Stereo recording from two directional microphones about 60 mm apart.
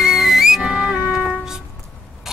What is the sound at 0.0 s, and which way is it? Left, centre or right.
Music, centre.